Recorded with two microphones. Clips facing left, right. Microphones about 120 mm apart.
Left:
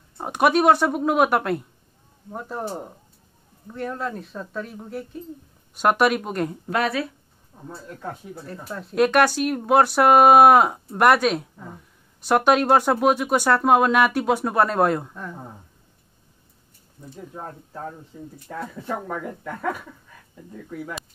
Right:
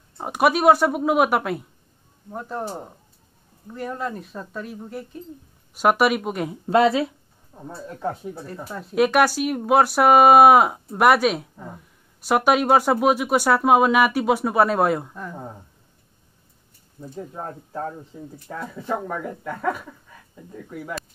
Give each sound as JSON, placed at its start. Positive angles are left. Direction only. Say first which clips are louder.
{"t": 0.2, "sound": "speech", "louder": "even", "side_deg": -5}
{"t": 6.7, "sound": "speech", "louder": "right 8 dB", "side_deg": -25}
{"t": 8.7, "sound": "speech", "louder": "even", "side_deg": -5}
{"t": 18.1, "sound": "speech", "louder": "even", "side_deg": -10}